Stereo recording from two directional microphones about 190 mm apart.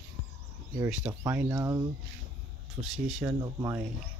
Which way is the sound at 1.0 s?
20° right (ahead or behind).